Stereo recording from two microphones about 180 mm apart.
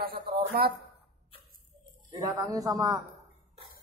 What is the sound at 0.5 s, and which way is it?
Speech, 55° right (ahead or behind).